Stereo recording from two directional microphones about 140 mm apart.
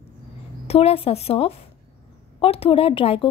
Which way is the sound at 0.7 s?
45° left (ahead or behind).